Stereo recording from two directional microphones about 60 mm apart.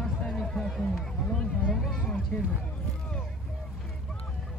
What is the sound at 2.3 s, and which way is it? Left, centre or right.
Speech, left.